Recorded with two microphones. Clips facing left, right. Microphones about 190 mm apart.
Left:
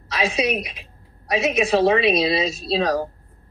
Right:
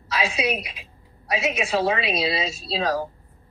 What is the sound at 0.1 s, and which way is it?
A woman's voice, 40° left (ahead or behind).